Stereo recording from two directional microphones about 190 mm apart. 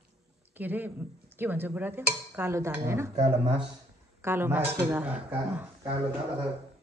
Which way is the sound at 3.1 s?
35° right (ahead or behind).